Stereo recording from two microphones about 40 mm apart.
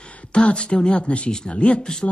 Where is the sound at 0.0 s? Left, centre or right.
Left.